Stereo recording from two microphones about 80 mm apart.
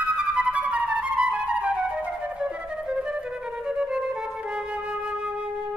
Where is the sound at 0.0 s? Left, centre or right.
Centre.